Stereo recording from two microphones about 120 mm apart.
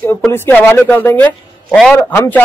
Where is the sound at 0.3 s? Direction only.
15° left (ahead or behind).